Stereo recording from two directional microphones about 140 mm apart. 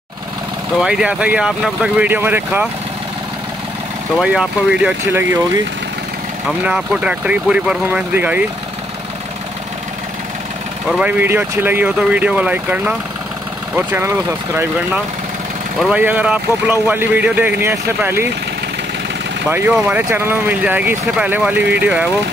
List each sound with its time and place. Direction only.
0.7 s speech: 5° right (ahead or behind)
4.2 s speech: 5° right (ahead or behind)
6.6 s speech: 10° right (ahead or behind)
10.9 s speech: 10° right (ahead or behind)
15.8 s speech: 10° right (ahead or behind)
19.5 s speech: 15° right (ahead or behind)